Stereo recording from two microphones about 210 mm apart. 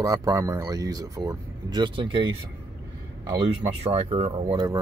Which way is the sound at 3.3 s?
25° right (ahead or behind).